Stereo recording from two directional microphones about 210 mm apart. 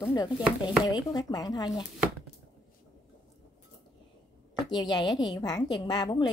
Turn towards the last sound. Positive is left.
turn(degrees=20)  # may be behind; listen again after turning